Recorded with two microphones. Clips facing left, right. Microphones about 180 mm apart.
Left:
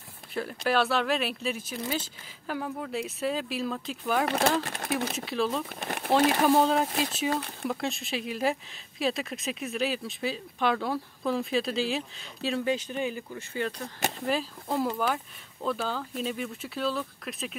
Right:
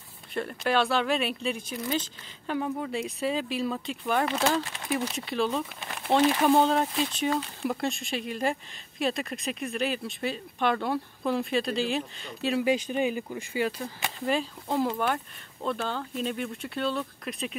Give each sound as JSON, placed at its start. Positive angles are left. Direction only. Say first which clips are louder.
{"t": 0.3, "sound": "speech", "louder": "even", "side_deg": 0}
{"t": 4.3, "sound": "speech", "louder": "left 1 dB", "side_deg": 55}
{"t": 5.1, "sound": "speech", "louder": "right 1 dB", "side_deg": 0}
{"t": 5.8, "sound": "speech", "louder": "left 5 dB", "side_deg": 50}
{"t": 6.4, "sound": "speech", "louder": "right 1 dB", "side_deg": 0}